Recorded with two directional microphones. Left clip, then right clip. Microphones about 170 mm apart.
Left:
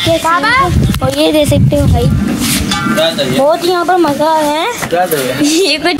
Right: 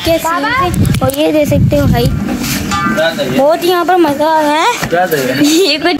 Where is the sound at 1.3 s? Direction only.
5° left (ahead or behind).